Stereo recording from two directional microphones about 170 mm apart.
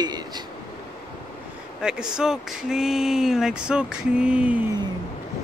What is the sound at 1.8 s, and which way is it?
Speech, 5° right (ahead or behind).